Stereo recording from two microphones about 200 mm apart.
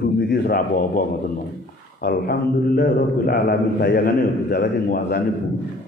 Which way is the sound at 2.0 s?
50° left (ahead or behind).